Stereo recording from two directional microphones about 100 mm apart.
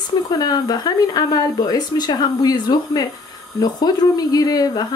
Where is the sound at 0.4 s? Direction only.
40° left (ahead or behind).